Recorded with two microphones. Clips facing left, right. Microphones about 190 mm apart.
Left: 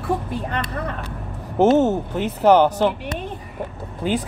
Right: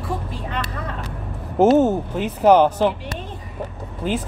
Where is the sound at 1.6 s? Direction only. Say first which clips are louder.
Right 1 dB; 5° right (ahead or behind).